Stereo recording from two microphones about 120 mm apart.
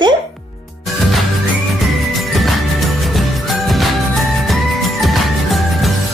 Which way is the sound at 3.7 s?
Centre (ahead or behind).